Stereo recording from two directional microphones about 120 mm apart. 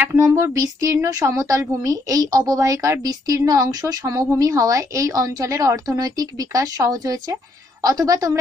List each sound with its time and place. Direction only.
0.2 s a woman's voice: 25° right (ahead or behind)